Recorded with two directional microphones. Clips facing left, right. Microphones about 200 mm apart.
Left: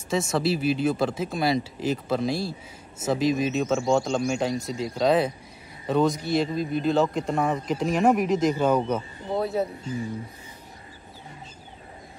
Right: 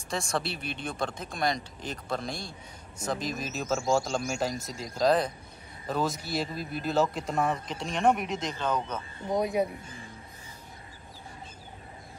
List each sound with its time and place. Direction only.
0.1 s a man's voice: centre (ahead or behind)
9.3 s speech: 15° right (ahead or behind)